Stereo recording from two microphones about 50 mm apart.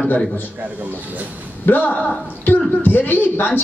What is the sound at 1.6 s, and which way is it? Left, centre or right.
Speech, left.